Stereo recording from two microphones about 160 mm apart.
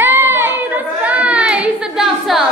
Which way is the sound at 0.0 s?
15° right (ahead or behind).